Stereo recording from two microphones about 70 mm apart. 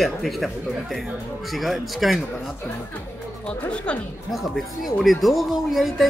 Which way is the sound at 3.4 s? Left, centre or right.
Centre.